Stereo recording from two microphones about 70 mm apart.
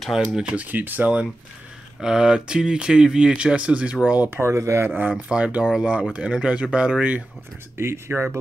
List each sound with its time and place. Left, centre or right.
0.1 s speech: centre
0.5 s speech: right
2.0 s speech: centre
4.3 s speech: right
5.1 s speech: centre
7.7 s speech: right